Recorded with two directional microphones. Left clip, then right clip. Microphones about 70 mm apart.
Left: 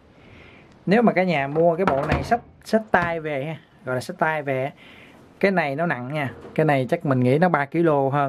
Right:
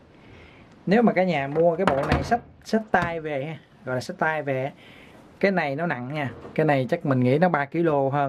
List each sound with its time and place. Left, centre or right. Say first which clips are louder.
0.8 s speech: left 2 dB; left